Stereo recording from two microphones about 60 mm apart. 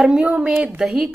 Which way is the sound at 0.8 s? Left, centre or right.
Centre.